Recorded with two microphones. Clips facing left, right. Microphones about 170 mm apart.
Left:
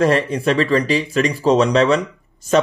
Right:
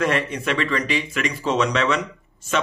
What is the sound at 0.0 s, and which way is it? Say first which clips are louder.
A man's voice: left 6 dB; 35° left (ahead or behind).